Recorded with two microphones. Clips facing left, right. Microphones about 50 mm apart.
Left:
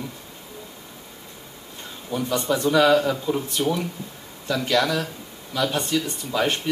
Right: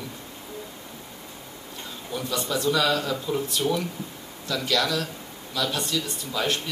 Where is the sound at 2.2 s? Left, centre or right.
Left.